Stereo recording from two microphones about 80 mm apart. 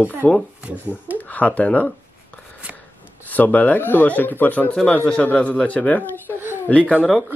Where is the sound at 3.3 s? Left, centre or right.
Centre.